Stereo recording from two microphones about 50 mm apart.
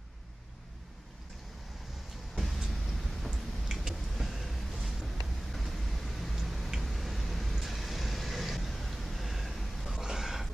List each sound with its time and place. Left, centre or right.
2.3 s vehicle: centre